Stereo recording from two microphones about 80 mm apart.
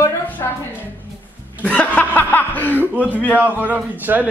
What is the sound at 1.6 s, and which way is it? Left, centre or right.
A child's voice, centre.